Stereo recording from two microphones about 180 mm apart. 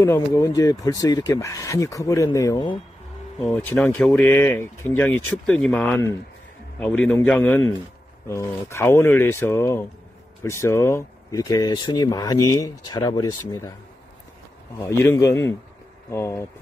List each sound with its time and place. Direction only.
0.0 s speech: 15° left (ahead or behind)
3.4 s speech: 10° left (ahead or behind)
14.8 s speech: 15° left (ahead or behind)